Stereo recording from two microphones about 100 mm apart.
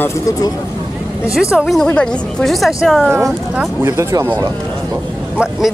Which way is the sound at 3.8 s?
35° right (ahead or behind).